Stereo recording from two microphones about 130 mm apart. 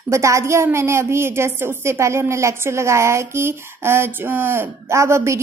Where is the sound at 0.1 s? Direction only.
20° right (ahead or behind).